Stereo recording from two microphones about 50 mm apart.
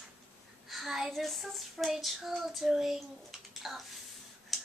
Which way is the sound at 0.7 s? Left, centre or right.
Centre.